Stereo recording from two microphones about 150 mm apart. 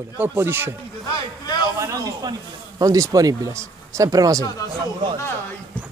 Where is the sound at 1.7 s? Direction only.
20° right (ahead or behind).